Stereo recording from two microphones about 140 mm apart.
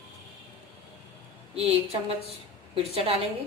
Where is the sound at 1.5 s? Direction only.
45° right (ahead or behind).